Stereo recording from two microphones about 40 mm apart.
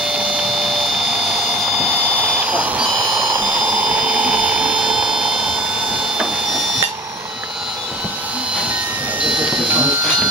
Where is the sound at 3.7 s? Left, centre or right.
Right.